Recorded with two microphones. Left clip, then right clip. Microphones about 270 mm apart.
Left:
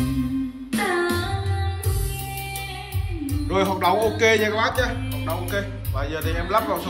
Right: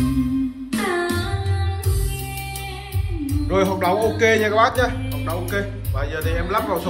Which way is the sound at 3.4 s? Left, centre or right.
Centre.